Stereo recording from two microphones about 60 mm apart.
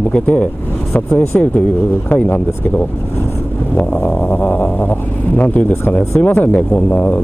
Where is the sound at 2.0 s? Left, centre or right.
Left.